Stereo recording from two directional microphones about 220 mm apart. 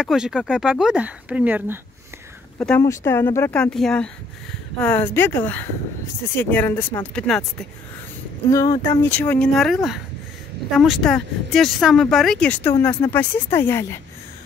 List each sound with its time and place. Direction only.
0.0 s speech: 5° right (ahead or behind)
2.6 s speech: 10° left (ahead or behind)
8.5 s speech: 15° left (ahead or behind); by 9.8 s centre (ahead or behind)
10.8 s speech: centre (ahead or behind)